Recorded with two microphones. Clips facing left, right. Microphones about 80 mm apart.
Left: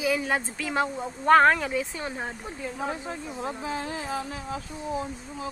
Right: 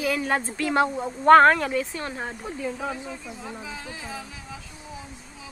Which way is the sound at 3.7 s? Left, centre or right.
Left.